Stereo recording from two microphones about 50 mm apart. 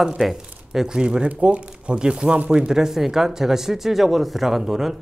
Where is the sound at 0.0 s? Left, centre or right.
Centre.